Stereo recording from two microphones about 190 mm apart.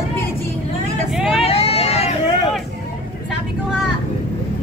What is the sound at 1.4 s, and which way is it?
Hubbub, 30° left (ahead or behind).